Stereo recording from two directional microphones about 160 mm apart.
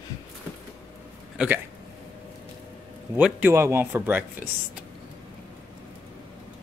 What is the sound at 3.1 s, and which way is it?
Speech, 10° right (ahead or behind).